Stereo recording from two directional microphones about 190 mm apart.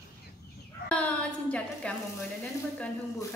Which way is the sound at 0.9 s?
5° left (ahead or behind).